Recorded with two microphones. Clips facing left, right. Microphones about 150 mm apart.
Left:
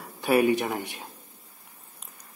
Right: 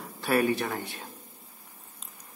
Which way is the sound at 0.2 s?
15° left (ahead or behind).